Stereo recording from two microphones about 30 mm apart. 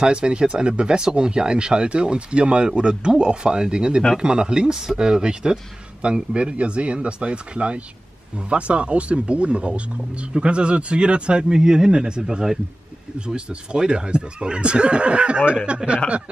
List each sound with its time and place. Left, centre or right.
0.0 s speech: right
6.3 s speech: right
11.5 s speech: right
13.3 s speech: right